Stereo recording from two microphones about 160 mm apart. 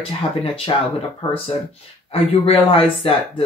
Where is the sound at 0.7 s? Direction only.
35° left (ahead or behind).